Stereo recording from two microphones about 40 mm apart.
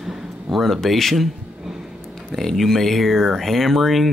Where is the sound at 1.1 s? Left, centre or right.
Centre.